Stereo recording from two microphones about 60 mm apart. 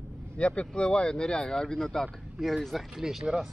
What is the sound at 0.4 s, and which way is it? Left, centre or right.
Speech, centre.